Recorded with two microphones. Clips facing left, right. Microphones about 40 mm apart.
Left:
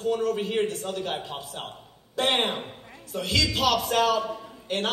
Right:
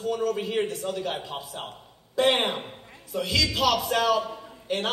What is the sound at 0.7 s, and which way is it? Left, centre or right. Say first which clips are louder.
Music: right 1 dB; left.